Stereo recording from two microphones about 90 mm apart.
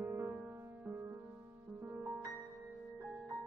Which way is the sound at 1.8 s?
25° right (ahead or behind).